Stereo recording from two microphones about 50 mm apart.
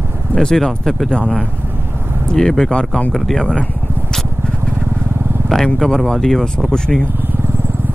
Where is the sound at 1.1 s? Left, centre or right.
Left.